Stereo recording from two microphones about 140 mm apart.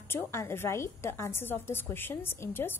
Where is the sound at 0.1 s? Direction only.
15° left (ahead or behind).